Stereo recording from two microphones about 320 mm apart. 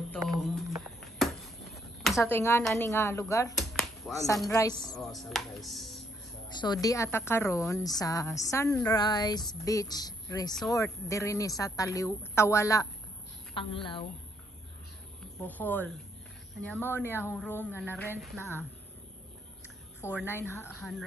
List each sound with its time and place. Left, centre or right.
0.1 s a sound: centre
4.2 s a woman's voice: centre
4.9 s speech: centre
6.6 s a woman's voice: centre
15.4 s a woman's voice: centre
20.0 s a woman's voice: centre